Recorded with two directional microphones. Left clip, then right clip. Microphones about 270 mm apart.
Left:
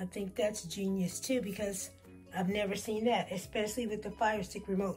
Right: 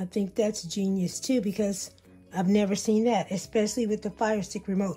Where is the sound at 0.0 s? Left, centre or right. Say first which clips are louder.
Right 6 dB; right.